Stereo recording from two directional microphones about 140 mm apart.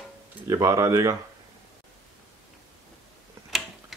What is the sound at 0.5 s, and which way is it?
Speech, 20° right (ahead or behind).